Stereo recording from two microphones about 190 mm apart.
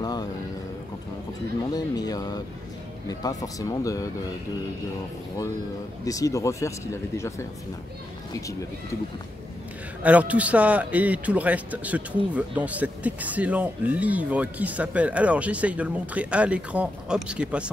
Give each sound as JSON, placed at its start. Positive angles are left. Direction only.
{"t": 0.0, "sound": "vehicle", "side_deg": 20}
{"t": 1.7, "sound": "speech", "side_deg": 20}
{"t": 6.0, "sound": "speech", "side_deg": 15}
{"t": 10.0, "sound": "speech", "side_deg": -5}